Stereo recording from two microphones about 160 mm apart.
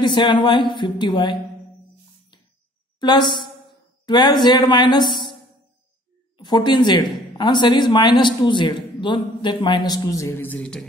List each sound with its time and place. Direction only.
0.0 s a man's voice: 30° left (ahead or behind)
3.0 s a man's voice: 30° left (ahead or behind)
6.3 s a man's voice: 25° left (ahead or behind); by 10.9 s 5° left (ahead or behind)